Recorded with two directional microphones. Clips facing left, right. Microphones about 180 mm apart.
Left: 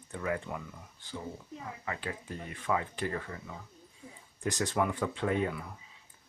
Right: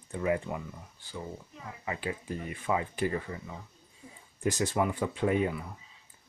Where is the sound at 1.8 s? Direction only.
15° right (ahead or behind).